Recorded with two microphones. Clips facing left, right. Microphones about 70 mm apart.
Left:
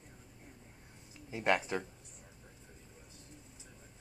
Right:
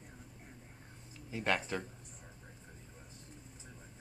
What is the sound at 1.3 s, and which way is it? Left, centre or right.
Speech, centre.